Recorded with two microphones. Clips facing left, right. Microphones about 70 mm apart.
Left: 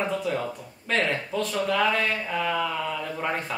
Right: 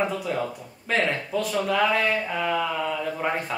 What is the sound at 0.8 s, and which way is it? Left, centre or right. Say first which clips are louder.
A woman's voice: right 1 dB; centre.